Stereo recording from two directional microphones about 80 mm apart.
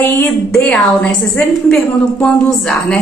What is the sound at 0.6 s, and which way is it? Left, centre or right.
Speech, centre.